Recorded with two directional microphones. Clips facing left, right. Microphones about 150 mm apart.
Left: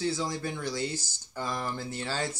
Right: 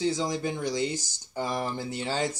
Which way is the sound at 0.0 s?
20° right (ahead or behind).